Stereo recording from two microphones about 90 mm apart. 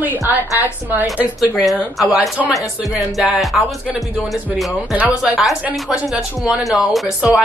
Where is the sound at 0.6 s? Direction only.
20° right (ahead or behind).